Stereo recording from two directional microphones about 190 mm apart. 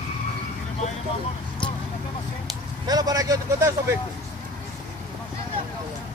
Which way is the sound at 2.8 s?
20° right (ahead or behind).